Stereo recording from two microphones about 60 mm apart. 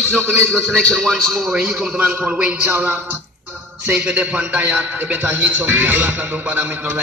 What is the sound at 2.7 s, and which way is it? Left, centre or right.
A man's voice, right.